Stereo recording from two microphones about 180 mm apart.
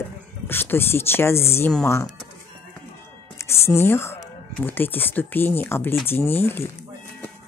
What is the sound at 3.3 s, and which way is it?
Speech, 15° left (ahead or behind).